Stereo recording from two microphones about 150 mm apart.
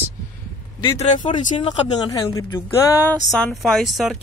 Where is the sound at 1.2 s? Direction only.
30° left (ahead or behind).